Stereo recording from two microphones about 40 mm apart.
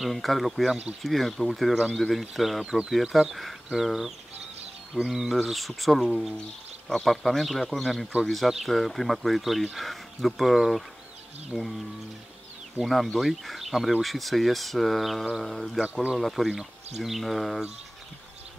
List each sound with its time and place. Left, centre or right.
0.0 s speech: centre
5.3 s speech: centre
11.5 s speech: left
12.8 s speech: centre
15.8 s speech: right
16.2 s speech: centre